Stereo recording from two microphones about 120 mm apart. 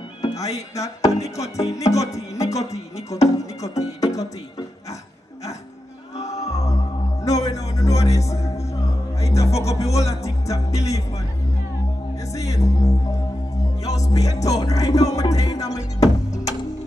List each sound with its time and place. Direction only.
0.2 s music: 30° left (ahead or behind)
6.3 s music: 30° left (ahead or behind)
12.3 s music: 25° left (ahead or behind)